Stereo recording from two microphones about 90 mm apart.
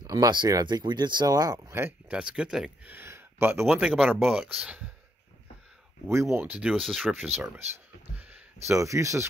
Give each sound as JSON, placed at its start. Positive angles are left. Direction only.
{"t": 0.0, "sound": "speech", "side_deg": -45}
{"t": 1.2, "sound": "speech", "side_deg": -40}
{"t": 1.7, "sound": "speech", "side_deg": -25}
{"t": 2.0, "sound": "speech", "side_deg": -10}
{"t": 2.8, "sound": "a sound", "side_deg": -25}
{"t": 4.0, "sound": "speech", "side_deg": -10}
{"t": 6.0, "sound": "speech", "side_deg": -30}
{"t": 6.5, "sound": "speech", "side_deg": -5}
{"t": 7.3, "sound": "speech", "side_deg": -30}
{"t": 8.6, "sound": "speech", "side_deg": -35}